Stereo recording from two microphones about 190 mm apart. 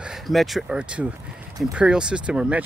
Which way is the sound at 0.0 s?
Centre (ahead or behind).